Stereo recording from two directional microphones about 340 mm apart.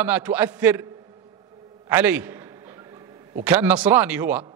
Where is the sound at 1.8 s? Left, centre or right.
Centre.